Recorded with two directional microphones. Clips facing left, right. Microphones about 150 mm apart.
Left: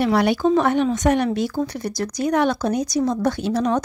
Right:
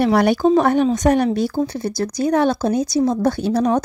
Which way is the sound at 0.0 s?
45° right (ahead or behind).